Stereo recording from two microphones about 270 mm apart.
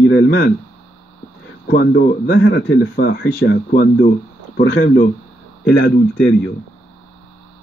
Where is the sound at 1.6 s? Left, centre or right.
Left.